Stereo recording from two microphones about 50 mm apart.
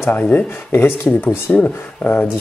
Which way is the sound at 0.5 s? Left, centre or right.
Left.